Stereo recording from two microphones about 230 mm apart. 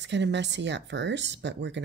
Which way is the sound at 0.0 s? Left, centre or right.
Right.